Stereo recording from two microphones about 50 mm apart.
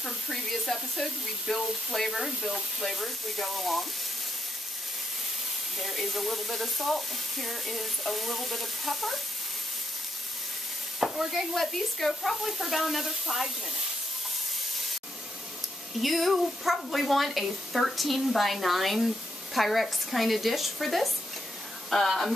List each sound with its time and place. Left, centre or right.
0.0 s speech: centre
5.8 s speech: centre
11.0 s speech: centre
16.0 s speech: centre